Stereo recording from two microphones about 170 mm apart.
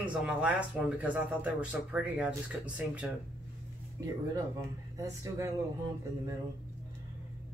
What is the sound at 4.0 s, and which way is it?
Speech, 20° right (ahead or behind).